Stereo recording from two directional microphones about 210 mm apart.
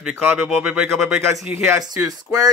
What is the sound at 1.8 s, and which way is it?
Speech, 20° right (ahead or behind).